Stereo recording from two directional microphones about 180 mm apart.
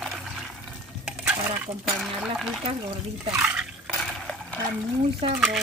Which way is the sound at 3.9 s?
5° left (ahead or behind).